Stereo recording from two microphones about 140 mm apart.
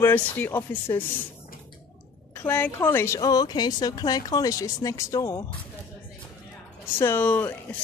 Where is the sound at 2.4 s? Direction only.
15° left (ahead or behind).